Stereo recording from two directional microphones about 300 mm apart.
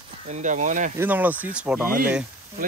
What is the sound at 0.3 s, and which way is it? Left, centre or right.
Speech, right.